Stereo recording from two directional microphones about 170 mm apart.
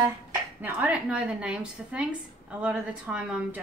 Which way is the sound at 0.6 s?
10° right (ahead or behind).